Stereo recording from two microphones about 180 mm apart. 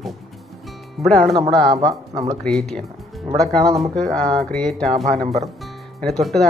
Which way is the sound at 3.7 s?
Centre (ahead or behind).